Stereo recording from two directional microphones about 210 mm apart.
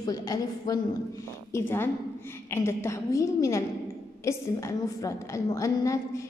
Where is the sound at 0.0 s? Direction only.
20° left (ahead or behind).